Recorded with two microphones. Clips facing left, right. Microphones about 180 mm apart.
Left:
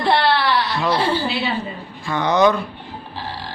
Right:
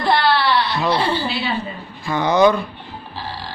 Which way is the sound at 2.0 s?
5° right (ahead or behind).